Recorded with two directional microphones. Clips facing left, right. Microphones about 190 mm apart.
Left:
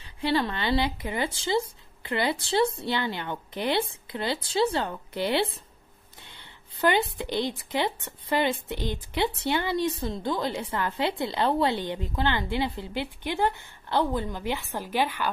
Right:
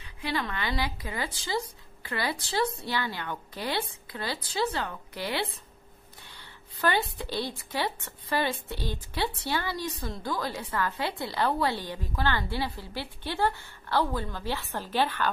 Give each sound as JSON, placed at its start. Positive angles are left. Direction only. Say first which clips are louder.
{"t": 0.0, "sound": "speech", "louder": "left 6 dB", "side_deg": 30}
{"t": 6.2, "sound": "a sound", "louder": "left 1 dB", "side_deg": 20}
{"t": 7.2, "sound": "speech", "louder": "left 4 dB", "side_deg": 20}